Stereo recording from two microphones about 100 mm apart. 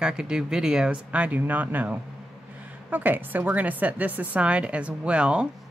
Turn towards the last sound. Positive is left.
turn(degrees=-10)  # may be behind; listen again after turning